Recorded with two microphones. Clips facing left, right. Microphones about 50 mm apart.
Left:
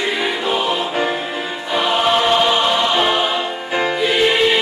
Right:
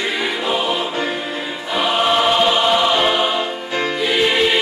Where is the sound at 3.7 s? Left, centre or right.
Centre.